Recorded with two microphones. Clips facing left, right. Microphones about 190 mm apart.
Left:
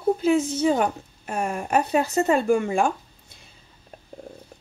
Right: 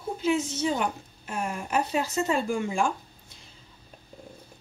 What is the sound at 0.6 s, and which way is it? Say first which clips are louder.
Speech: left 6 dB; 50° left (ahead or behind).